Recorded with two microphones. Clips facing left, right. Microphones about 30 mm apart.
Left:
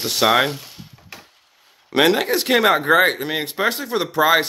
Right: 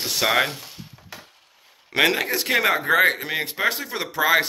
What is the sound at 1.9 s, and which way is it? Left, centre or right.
Speech, centre.